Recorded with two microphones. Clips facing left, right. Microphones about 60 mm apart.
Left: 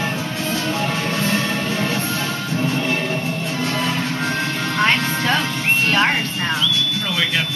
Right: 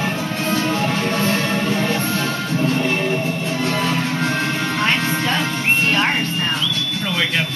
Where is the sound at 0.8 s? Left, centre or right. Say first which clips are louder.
Right 2 dB; centre.